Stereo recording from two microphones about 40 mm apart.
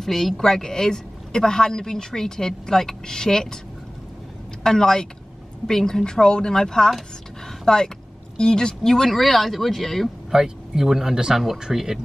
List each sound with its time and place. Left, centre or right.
0.0 s a woman's voice: centre
4.6 s a woman's voice: centre
10.3 s speech: centre